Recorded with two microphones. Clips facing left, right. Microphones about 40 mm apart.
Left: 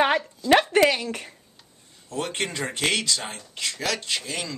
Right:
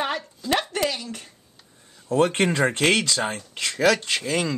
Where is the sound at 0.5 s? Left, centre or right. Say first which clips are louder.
Left 6 dB; left.